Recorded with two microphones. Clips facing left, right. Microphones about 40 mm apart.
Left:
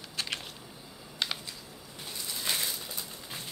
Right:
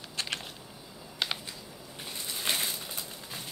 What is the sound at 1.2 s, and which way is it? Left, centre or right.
Computer keyboard, centre.